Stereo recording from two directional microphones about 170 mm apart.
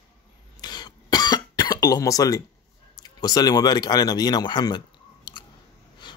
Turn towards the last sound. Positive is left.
turn(degrees=25)  # may be behind; listen again after turning